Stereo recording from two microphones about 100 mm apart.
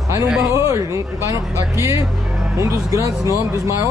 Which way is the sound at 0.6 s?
30° right (ahead or behind).